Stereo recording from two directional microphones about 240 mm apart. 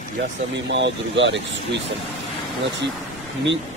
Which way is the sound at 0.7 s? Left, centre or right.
Right.